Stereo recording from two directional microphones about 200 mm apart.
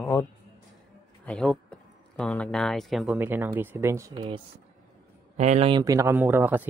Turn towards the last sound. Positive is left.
turn(degrees=-10)  # may be behind; listen again after turning